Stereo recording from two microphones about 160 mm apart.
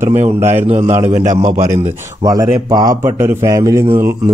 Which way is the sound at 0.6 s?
40° right (ahead or behind).